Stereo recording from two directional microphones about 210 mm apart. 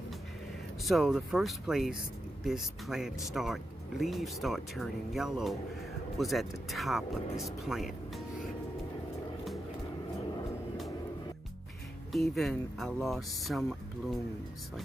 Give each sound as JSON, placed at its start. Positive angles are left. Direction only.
{"t": 0.8, "sound": "speech", "side_deg": 0}
{"t": 12.1, "sound": "speech", "side_deg": 0}